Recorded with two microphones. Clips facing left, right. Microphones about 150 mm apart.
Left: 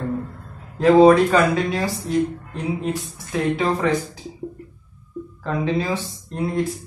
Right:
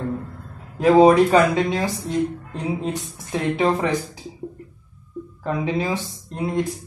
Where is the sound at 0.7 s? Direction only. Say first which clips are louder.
Left 1 dB; 15° right (ahead or behind).